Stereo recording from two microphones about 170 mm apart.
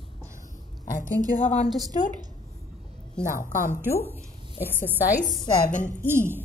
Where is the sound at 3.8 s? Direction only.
10° left (ahead or behind).